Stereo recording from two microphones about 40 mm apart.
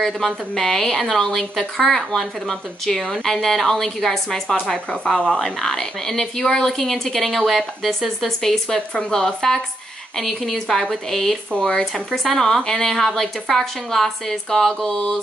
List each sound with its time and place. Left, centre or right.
0.0 s a woman's voice: centre
11.6 s a woman's voice: centre